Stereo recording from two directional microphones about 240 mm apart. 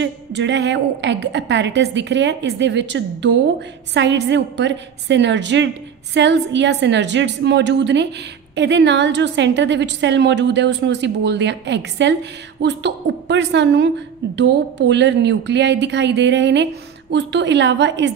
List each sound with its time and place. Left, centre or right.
0.0 s a woman's voice: right